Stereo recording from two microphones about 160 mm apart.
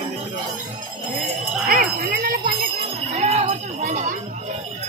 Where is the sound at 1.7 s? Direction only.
65° right (ahead or behind).